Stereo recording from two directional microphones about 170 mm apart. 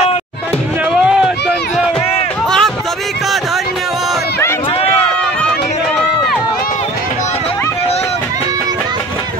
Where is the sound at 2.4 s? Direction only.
5° left (ahead or behind).